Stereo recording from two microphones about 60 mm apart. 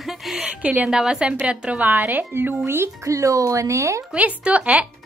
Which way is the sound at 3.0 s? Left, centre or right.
Right.